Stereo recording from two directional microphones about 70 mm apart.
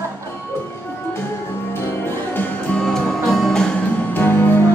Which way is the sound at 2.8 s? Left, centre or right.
Centre.